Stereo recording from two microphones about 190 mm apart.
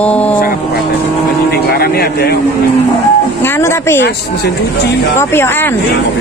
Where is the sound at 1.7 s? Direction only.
55° left (ahead or behind).